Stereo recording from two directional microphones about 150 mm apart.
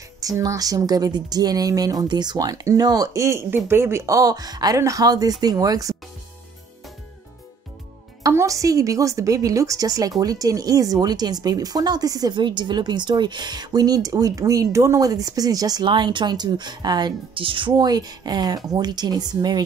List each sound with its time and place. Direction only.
0.2 s a woman's voice: 25° right (ahead or behind)
8.2 s a woman's voice: 20° right (ahead or behind)